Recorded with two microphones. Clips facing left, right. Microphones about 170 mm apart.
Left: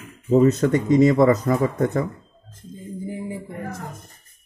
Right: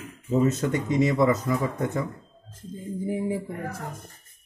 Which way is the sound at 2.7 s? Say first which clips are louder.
Right 2 dB; centre (ahead or behind).